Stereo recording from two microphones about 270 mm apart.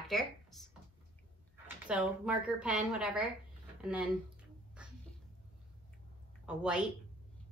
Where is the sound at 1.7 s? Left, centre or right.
Centre.